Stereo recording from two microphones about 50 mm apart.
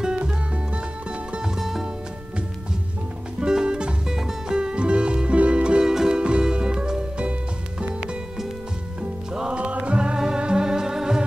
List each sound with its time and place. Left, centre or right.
0.0 s music: centre
3.3 s music: centre
9.3 s music: centre